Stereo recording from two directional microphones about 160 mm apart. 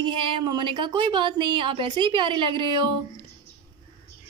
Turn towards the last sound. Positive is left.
turn(degrees=-30)  # may be behind; listen again after turning